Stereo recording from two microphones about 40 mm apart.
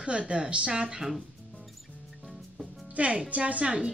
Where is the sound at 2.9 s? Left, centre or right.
Right.